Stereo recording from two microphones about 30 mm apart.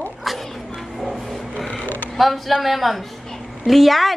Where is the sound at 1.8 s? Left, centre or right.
Left.